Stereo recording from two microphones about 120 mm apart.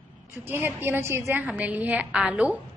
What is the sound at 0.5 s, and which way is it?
A woman's voice, 15° right (ahead or behind).